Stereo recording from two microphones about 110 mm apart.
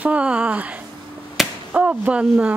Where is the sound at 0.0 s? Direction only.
10° right (ahead or behind).